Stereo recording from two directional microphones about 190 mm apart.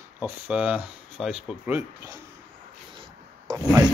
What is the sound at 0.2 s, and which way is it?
Speech, 5° right (ahead or behind).